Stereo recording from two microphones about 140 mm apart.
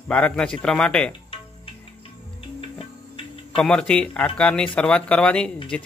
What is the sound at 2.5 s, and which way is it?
Hum, 40° left (ahead or behind).